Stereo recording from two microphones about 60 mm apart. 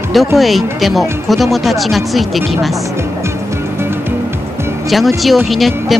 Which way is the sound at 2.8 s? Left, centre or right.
Right.